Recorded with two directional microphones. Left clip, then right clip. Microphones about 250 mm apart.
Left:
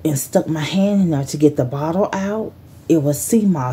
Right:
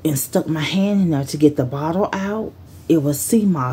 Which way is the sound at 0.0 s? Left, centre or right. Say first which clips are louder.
Left 2 dB; centre.